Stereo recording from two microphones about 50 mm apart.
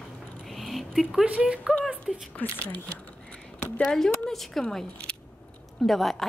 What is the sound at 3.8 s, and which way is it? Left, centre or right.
Speech, centre.